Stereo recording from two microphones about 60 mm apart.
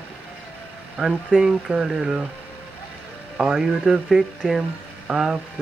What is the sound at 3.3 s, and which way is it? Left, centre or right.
Speech, centre.